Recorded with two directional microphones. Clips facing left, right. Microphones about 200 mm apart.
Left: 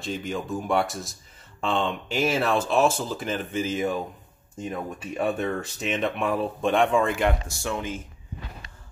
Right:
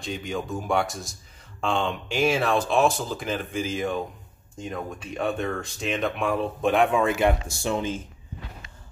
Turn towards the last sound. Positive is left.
turn(degrees=-25)  # may be behind; listen again after turning